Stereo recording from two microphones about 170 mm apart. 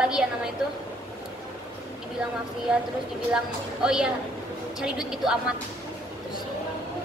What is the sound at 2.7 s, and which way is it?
A woman's voice, 5° right (ahead or behind).